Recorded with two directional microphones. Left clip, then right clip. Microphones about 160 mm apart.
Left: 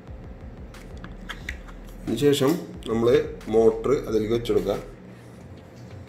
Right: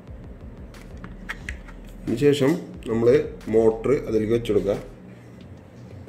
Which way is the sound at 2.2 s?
30° right (ahead or behind).